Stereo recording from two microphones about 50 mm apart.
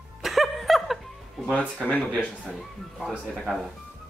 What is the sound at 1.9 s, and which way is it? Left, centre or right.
Speech, left.